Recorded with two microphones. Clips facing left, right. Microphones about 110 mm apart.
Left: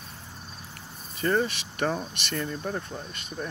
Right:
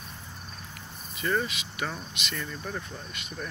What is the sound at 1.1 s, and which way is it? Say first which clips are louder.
Speech: left 4 dB; 40° left (ahead or behind).